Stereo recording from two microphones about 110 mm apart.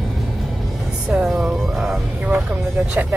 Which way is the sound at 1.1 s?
Centre (ahead or behind).